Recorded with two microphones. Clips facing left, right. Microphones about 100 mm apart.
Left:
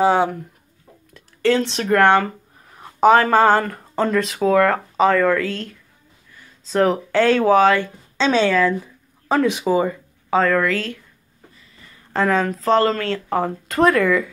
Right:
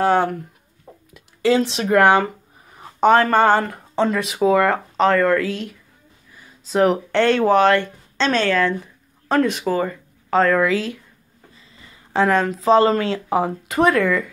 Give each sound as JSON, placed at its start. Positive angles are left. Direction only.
{"t": 0.0, "sound": "speech", "side_deg": 10}
{"t": 1.1, "sound": "speech", "side_deg": -5}
{"t": 10.6, "sound": "speech", "side_deg": -10}
{"t": 12.1, "sound": "speech", "side_deg": 0}
{"t": 12.6, "sound": "speech", "side_deg": -20}
{"t": 13.3, "sound": "speech", "side_deg": -5}